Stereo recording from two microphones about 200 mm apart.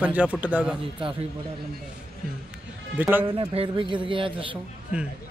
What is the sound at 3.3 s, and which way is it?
Speech, 25° right (ahead or behind).